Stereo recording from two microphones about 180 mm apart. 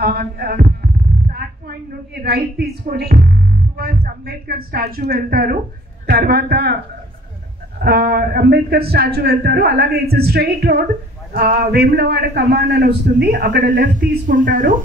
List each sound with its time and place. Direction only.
0.0 s speech: 55° right (ahead or behind)
2.6 s speech: 60° right (ahead or behind)
7.8 s a woman's voice: 60° right (ahead or behind)
14.2 s a woman's voice: 50° right (ahead or behind)